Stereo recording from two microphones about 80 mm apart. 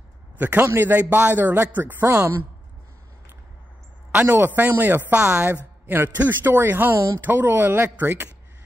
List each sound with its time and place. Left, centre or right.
0.4 s a man's voice: right
4.1 s a man's voice: right
5.2 s a woman's voice: centre
5.9 s a man's voice: right